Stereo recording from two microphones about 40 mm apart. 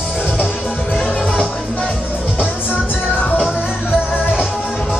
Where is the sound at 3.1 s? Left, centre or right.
Left.